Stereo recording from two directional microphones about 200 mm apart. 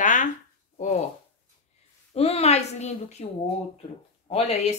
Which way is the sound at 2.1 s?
30° left (ahead or behind).